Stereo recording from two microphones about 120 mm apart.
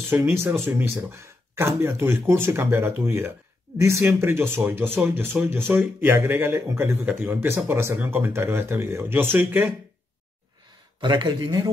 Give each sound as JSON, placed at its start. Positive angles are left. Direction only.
{"t": 0.1, "sound": "speech", "side_deg": -20}
{"t": 11.0, "sound": "a man's voice", "side_deg": -40}